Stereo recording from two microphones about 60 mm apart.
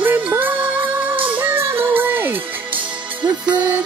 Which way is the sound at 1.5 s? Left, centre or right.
Right.